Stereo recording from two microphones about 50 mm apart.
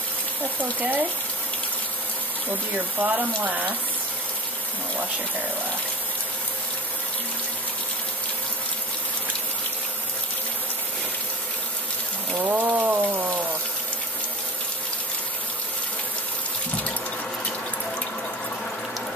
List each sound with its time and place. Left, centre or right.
0.7 s speech: right
3.0 s speech: right
12.4 s speech: right